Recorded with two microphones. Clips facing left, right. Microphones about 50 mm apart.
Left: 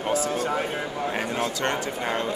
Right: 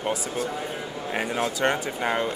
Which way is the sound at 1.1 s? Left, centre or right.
Centre.